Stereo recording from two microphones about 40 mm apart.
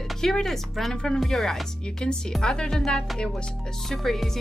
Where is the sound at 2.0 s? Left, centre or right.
Left.